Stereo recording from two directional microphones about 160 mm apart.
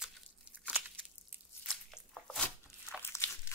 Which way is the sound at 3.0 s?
15° left (ahead or behind).